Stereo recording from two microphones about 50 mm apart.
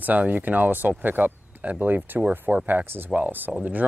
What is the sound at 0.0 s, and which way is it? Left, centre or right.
Speech, right.